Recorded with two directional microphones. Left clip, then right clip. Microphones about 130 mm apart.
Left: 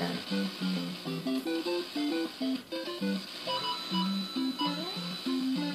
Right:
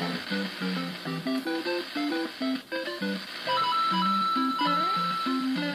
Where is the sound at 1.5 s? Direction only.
10° left (ahead or behind).